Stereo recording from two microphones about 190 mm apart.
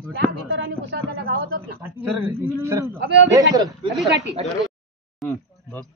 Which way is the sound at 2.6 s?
15° right (ahead or behind).